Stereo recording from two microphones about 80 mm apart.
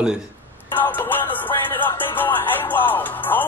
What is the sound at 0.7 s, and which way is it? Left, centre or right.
Music, left.